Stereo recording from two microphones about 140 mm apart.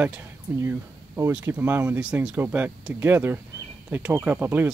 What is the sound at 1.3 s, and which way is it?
Speech, 10° right (ahead or behind).